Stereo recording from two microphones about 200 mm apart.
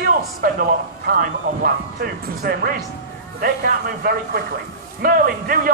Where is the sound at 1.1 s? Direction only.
45° right (ahead or behind).